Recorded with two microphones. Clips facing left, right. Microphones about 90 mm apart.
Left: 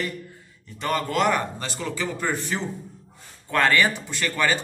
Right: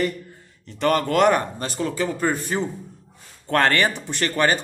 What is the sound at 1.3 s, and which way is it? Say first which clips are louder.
A man's voice: right 3 dB; 40° right (ahead or behind).